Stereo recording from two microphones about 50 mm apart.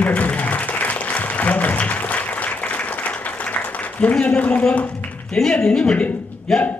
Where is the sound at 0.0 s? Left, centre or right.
Left.